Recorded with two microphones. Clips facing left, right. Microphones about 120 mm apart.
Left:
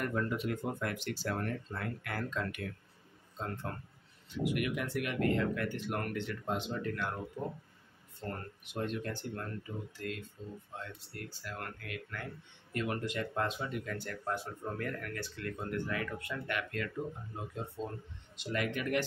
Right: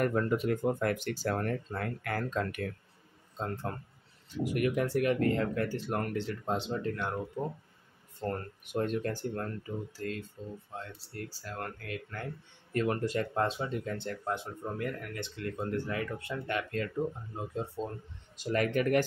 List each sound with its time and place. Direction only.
0.0 s speech: 50° right (ahead or behind)
4.3 s speech: 40° right (ahead or behind)
8.2 s speech: 45° right (ahead or behind)